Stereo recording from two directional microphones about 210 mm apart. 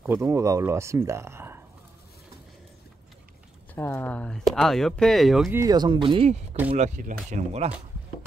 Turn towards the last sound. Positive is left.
turn(degrees=-35)  # may be behind; listen again after turning